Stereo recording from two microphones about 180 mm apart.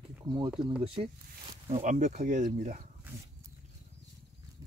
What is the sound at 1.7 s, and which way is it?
Speech, 40° right (ahead or behind).